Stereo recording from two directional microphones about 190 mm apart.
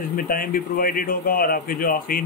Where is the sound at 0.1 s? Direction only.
50° left (ahead or behind).